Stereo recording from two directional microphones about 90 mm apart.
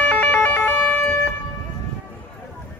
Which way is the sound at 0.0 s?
15° left (ahead or behind).